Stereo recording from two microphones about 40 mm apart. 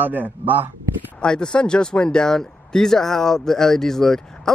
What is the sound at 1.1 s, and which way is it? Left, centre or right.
Speech, left.